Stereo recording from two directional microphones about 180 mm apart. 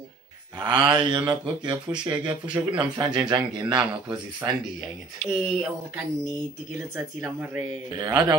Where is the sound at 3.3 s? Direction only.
25° right (ahead or behind).